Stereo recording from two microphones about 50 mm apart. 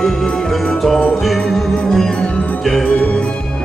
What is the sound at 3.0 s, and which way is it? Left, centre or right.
Music, left.